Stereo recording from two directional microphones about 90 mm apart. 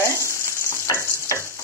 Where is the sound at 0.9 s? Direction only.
30° left (ahead or behind).